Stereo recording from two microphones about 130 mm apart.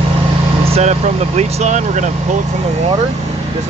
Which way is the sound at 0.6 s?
55° right (ahead or behind).